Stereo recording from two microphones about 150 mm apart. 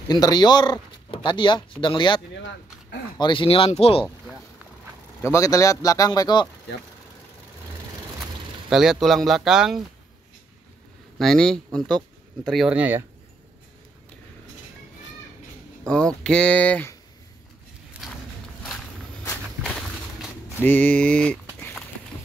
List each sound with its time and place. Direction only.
0.1 s speech: 25° left (ahead or behind)
5.2 s a man's voice: 20° left (ahead or behind)
8.6 s speech: 5° right (ahead or behind)
11.1 s speech: 5° left (ahead or behind)
15.8 s speech: 5° left (ahead or behind)
17.9 s a sound: 10° right (ahead or behind)
19.6 s a sound: 5° left (ahead or behind)
20.6 s speech: 10° left (ahead or behind)